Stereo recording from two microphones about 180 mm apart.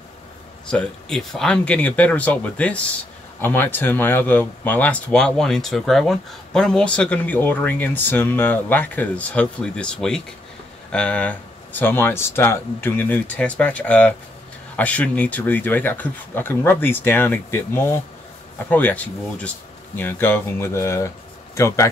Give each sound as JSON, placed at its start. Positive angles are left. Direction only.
{"t": 0.7, "sound": "speech", "side_deg": 5}